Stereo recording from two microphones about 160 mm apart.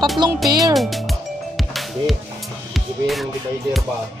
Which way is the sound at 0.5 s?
25° right (ahead or behind).